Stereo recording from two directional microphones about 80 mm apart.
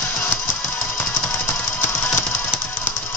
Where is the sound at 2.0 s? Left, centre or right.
Left.